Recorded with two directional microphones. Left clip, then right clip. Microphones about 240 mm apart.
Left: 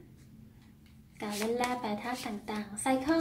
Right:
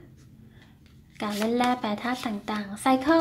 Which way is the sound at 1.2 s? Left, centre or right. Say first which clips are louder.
Right 6 dB; right.